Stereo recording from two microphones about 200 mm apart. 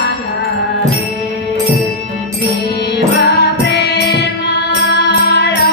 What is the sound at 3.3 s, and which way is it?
Music, 55° left (ahead or behind).